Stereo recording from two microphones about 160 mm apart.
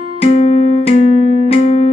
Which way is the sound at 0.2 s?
40° left (ahead or behind).